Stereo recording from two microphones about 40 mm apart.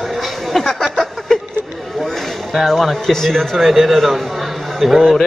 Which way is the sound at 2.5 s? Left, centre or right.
Centre.